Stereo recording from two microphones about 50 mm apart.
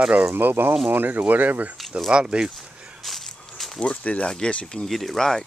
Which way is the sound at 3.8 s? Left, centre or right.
Left.